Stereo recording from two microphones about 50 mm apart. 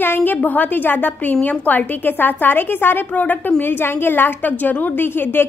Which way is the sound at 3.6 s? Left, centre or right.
Left.